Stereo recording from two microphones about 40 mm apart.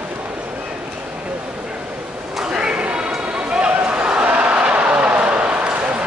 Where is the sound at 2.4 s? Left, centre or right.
Right.